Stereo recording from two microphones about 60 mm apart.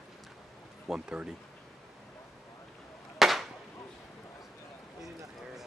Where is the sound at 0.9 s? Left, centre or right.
Centre.